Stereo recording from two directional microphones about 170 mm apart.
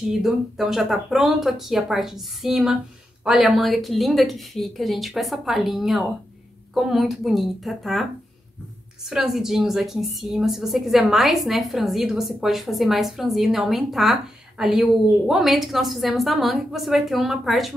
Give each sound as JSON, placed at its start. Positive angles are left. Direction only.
{"t": 0.1, "sound": "a woman's voice", "side_deg": 0}